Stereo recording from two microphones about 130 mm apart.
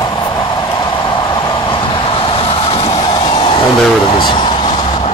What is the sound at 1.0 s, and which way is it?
Vehicle, 35° left (ahead or behind).